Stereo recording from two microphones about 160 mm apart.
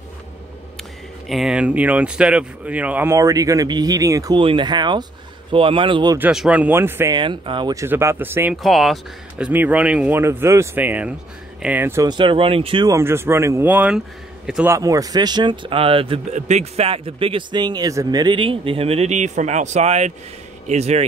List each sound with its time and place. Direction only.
1.3 s speech: 5° right (ahead or behind); by 4.4 s 20° right (ahead or behind)
4.4 s a man's voice: 30° right (ahead or behind)
6.1 s speech: 5° right (ahead or behind)
7.2 s speech: 30° right (ahead or behind); by 8.5 s 15° right (ahead or behind)
8.6 s speech: centre (ahead or behind)
9.5 s speech: 10° right (ahead or behind)
12.1 s a man's voice: 30° right (ahead or behind)
12.8 s speech: 15° right (ahead or behind)
14.7 s speech: 20° right (ahead or behind)
16.3 s a man's voice: 45° right (ahead or behind)